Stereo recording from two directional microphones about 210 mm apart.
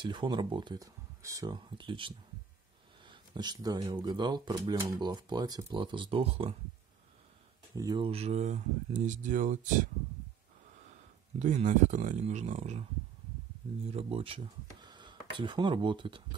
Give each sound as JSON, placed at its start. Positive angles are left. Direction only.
{"t": 0.0, "sound": "speech", "side_deg": -20}
{"t": 7.7, "sound": "speech", "side_deg": -20}
{"t": 11.3, "sound": "speech", "side_deg": -35}
{"t": 13.8, "sound": "speech", "side_deg": -25}